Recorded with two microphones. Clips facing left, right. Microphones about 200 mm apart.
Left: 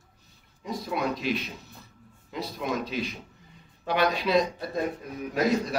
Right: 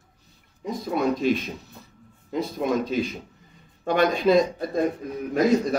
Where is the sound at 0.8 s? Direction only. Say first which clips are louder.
Right 7 dB; 45° right (ahead or behind).